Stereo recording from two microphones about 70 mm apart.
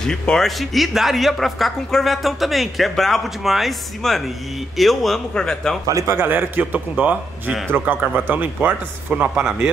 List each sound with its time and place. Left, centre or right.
0.0 s speech: centre
6.0 s speech: right; by 9.7 s centre